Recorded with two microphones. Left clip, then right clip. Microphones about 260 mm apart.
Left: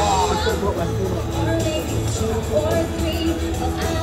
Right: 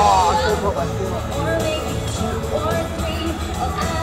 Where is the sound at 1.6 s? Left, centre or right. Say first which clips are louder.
Right 1 dB; centre.